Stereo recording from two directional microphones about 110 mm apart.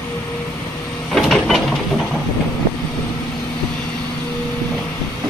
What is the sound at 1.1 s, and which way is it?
Printer, centre (ahead or behind).